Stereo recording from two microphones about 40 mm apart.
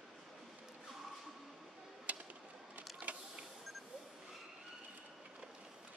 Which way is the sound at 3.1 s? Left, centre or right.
Right.